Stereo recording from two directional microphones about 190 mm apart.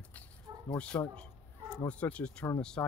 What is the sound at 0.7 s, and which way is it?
Speech, 5° left (ahead or behind).